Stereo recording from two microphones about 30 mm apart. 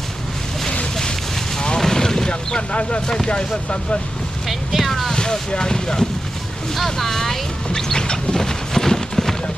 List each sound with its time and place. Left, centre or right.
1.8 s a sound: centre
2.7 s speech: left
4.5 s speech: centre
5.1 s speech: left
6.7 s boat: centre